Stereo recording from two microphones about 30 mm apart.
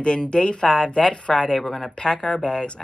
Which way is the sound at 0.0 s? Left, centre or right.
Left.